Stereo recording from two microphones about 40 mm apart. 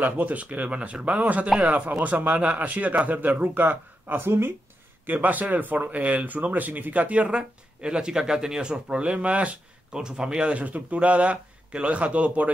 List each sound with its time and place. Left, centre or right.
0.0 s speech: right
2.3 s a man's voice: right
2.6 s speech: right
4.2 s speech: right
5.0 s speech: right
9.9 s a man's voice: centre
10.6 s speech: right